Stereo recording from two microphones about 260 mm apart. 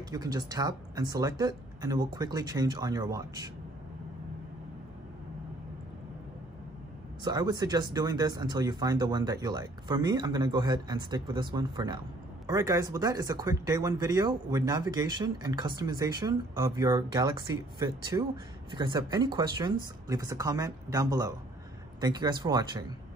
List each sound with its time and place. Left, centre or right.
0.1 s speech: centre
7.2 s speech: centre